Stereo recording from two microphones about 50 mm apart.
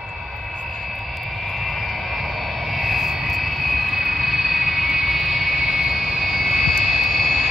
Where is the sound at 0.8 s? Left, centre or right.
Centre.